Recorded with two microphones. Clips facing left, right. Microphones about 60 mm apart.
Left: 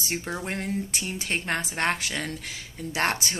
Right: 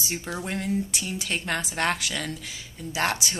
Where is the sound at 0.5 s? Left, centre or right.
Left.